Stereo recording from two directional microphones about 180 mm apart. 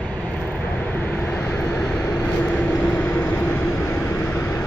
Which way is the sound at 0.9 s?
10° left (ahead or behind).